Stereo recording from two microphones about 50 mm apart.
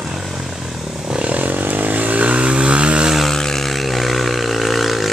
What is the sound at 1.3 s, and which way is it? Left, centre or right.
Vehicle, right.